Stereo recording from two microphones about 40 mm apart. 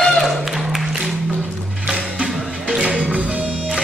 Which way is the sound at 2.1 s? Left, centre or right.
Right.